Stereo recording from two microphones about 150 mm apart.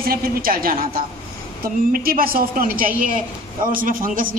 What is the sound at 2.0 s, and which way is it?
A woman's voice, 80° right.